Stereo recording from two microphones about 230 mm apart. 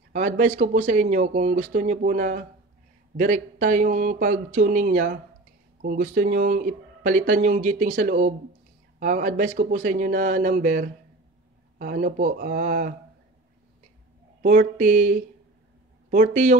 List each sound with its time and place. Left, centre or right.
0.1 s speech: right
14.4 s speech: right